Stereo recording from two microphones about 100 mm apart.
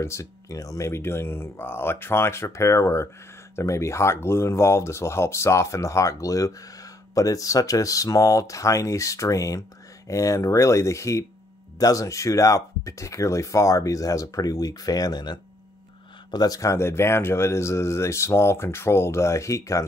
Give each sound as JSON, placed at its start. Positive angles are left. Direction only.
{"t": 0.0, "sound": "speech", "side_deg": 30}